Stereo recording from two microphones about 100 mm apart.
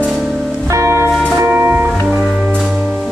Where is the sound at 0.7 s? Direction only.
30° right (ahead or behind).